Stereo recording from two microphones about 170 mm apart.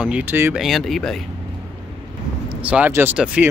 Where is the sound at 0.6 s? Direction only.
Centre (ahead or behind).